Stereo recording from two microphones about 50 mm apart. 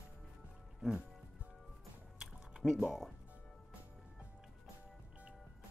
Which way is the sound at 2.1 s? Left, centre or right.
Centre.